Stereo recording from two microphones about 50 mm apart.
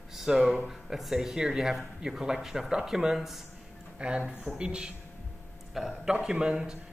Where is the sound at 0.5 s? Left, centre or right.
Centre.